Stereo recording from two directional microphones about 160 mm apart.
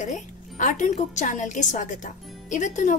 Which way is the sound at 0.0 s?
50° left (ahead or behind).